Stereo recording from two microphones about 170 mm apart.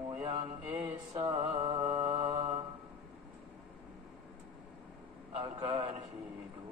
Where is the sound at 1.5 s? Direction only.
35° right (ahead or behind).